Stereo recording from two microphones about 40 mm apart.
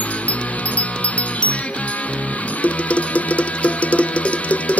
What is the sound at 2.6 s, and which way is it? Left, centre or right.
Music, left.